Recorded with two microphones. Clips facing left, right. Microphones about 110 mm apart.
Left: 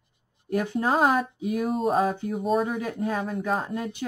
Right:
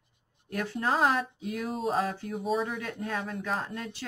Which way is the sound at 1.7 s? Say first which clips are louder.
Left 5 dB; centre (ahead or behind).